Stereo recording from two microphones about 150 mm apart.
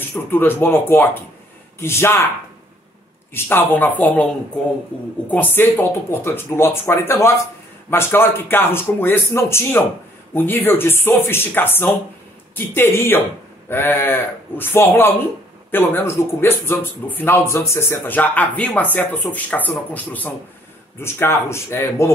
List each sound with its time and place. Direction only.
0.1 s speech: 15° left (ahead or behind)
3.3 s speech: 15° left (ahead or behind)
5.3 s speech: 10° left (ahead or behind)